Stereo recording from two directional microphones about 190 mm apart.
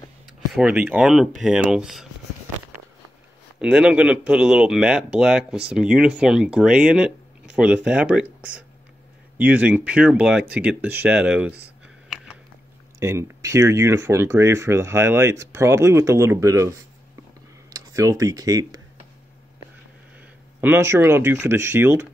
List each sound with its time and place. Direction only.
0.5 s speech: 5° right (ahead or behind)
3.6 s speech: 5° right (ahead or behind)
13.0 s speech: 15° right (ahead or behind)
20.2 s speech: 10° right (ahead or behind)